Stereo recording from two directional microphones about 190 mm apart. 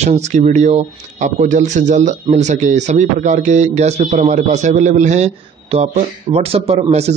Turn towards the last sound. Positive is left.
turn(degrees=-35)  # may be behind; listen again after turning